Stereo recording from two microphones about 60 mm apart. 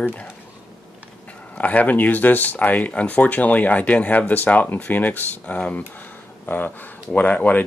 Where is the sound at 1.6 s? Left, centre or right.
Left.